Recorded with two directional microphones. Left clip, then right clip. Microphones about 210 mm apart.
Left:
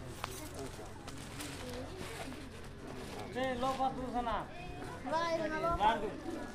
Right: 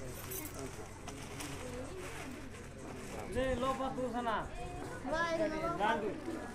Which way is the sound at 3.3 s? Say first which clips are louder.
Even; 50° right (ahead or behind).